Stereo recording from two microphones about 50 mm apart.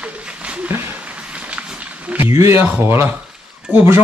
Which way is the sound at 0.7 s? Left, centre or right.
Right.